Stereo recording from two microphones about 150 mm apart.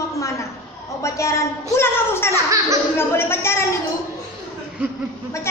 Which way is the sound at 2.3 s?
20° right (ahead or behind).